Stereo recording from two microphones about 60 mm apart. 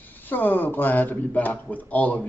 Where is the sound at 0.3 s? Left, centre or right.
Left.